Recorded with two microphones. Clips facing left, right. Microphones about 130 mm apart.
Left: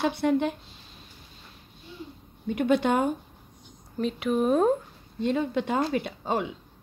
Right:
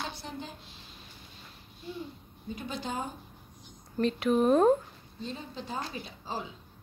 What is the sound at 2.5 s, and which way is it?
Speech, 70° left (ahead or behind).